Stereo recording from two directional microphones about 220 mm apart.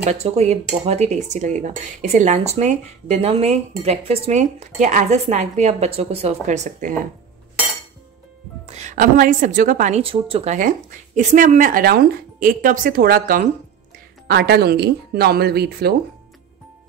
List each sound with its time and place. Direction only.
0.0 s speech: 30° right (ahead or behind)
8.6 s speech: 30° right (ahead or behind); by 15.9 s 45° right (ahead or behind)